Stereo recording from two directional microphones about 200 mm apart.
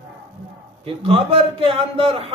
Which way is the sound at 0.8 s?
30° right (ahead or behind).